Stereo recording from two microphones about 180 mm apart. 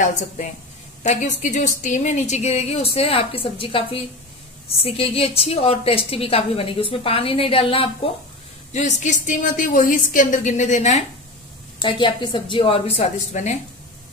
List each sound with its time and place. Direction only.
0.0 s a woman's voice: 40° left (ahead or behind)
11.8 s a woman's voice: 25° left (ahead or behind)